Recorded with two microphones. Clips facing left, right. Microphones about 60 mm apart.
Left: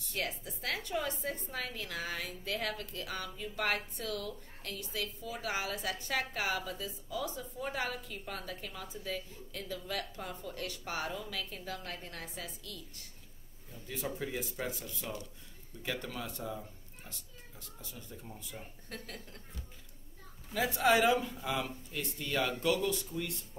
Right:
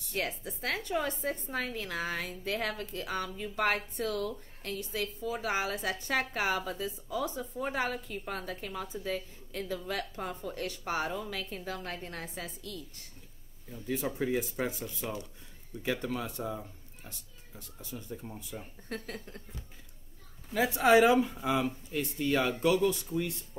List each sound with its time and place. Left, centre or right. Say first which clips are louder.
0.1 s a woman's voice: right 3 dB; right
13.8 s speech: right 7 dB; right
17.9 s speech: right 10 dB; right
18.9 s a woman's voice: right 7 dB; right
20.5 s speech: right 5 dB; right